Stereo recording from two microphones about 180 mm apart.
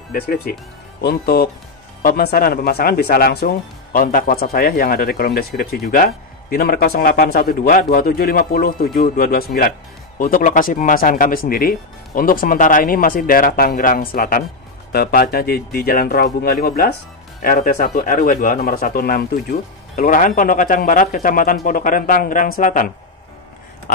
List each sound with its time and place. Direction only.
0.1 s speech: 55° left (ahead or behind)